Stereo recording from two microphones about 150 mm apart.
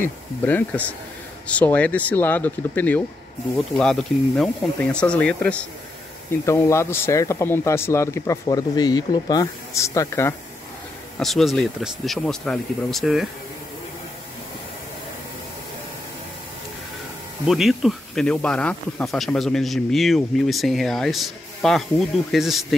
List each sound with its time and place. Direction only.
0.0 s speech: 10° left (ahead or behind)
11.1 s speech: centre (ahead or behind)
17.5 s speech: centre (ahead or behind)